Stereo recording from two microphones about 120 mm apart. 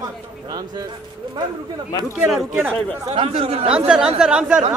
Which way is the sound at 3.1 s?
55° right (ahead or behind).